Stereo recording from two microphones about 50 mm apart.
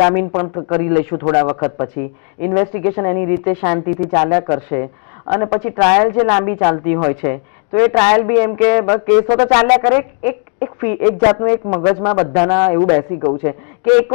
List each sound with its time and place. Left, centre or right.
0.0 s a man's voice: centre
4.3 s speech: right
4.6 s a man's voice: centre